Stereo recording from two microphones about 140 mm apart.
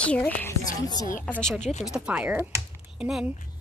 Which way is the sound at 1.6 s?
55° left (ahead or behind).